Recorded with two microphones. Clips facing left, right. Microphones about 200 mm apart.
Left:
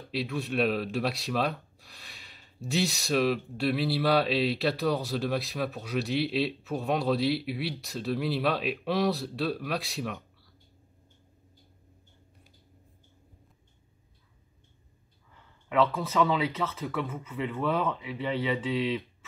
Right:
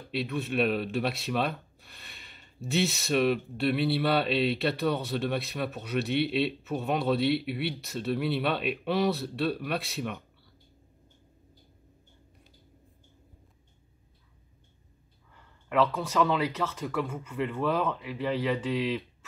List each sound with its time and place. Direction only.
0.1 s speech: centre (ahead or behind)
15.3 s speech: centre (ahead or behind)